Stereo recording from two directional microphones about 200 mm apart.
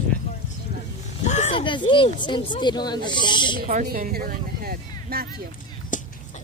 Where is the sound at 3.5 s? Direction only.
45° right (ahead or behind).